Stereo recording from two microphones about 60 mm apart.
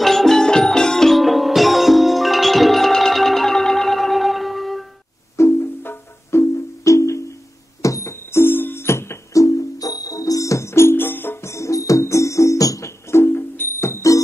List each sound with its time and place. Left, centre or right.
0.0 s music: centre
5.4 s music: left
6.8 s music: left
9.3 s music: left
11.4 s music: left
13.1 s music: left